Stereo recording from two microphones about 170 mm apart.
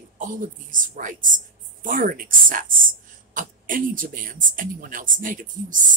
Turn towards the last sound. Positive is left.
turn(degrees=-50)  # may be behind; listen again after turning